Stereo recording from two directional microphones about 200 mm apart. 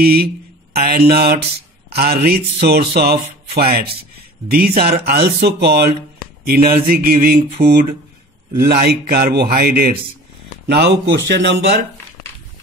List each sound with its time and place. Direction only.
0.0 s speech: 50° right (ahead or behind)